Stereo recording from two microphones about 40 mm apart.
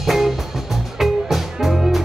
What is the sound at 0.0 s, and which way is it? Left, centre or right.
Music, centre.